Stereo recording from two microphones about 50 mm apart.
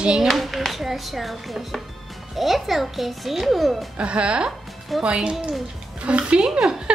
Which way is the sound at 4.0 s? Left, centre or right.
Right.